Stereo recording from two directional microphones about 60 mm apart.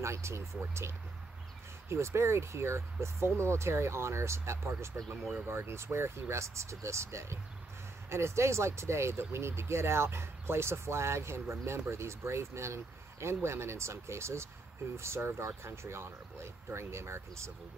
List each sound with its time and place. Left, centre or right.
0.0 s speech: right